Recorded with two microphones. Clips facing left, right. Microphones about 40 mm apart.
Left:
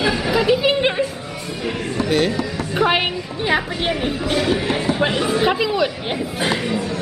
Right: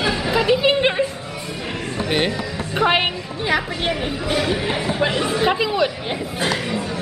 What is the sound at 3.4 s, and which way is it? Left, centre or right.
Speech, centre.